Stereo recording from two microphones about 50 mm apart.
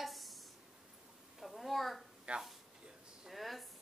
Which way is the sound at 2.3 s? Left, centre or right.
Right.